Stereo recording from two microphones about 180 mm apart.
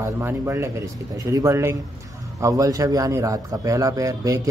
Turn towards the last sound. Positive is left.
turn(degrees=-20)  # may be behind; listen again after turning